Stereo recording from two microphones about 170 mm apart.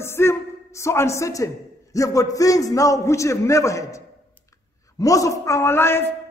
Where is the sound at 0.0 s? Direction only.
15° left (ahead or behind).